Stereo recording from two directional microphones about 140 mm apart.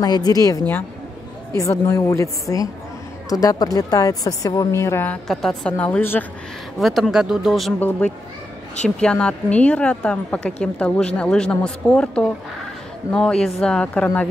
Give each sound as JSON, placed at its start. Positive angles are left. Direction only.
{"t": 0.0, "sound": "a woman's voice", "side_deg": 30}
{"t": 1.6, "sound": "a woman's voice", "side_deg": 25}
{"t": 5.3, "sound": "a woman's voice", "side_deg": 5}
{"t": 6.8, "sound": "speech", "side_deg": 0}
{"t": 8.8, "sound": "a woman's voice", "side_deg": 5}